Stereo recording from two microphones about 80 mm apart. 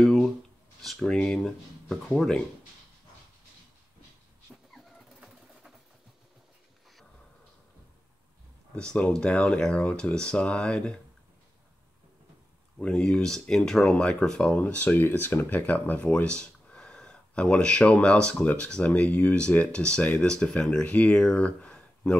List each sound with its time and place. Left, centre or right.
0.0 s shuffling cards: centre
0.8 s speech: centre
4.5 s vehicle: centre
8.7 s speech: centre
12.7 s speech: centre
21.2 s a sound: centre